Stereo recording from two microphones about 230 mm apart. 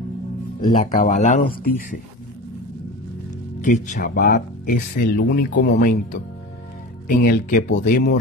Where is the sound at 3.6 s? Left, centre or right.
Left.